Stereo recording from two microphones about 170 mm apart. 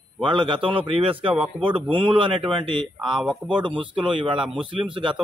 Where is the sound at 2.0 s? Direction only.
30° right (ahead or behind).